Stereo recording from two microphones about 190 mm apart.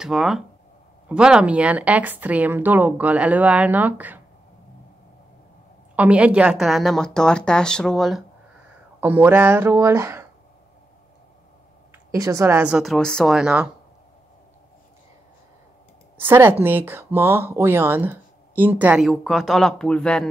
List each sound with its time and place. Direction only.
0.0 s a woman's voice: centre (ahead or behind)
5.9 s a woman's voice: 5° right (ahead or behind)
9.0 s speech: 10° right (ahead or behind)
12.1 s a woman's voice: 15° right (ahead or behind)
16.2 s speech: 10° right (ahead or behind)